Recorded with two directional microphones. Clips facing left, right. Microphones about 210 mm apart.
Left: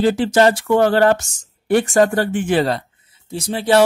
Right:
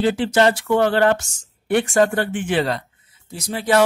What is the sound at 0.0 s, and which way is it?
Speech, 40° left (ahead or behind).